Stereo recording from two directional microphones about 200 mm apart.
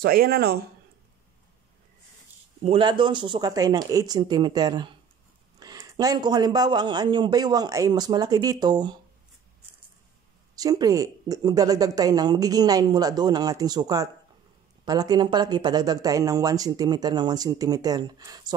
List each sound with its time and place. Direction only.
0.0 s speech: 50° right (ahead or behind)
2.6 s speech: 25° right (ahead or behind)
10.5 s speech: 20° right (ahead or behind)